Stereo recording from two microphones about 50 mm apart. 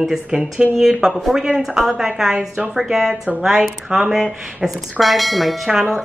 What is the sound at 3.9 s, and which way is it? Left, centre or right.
A woman's voice, centre.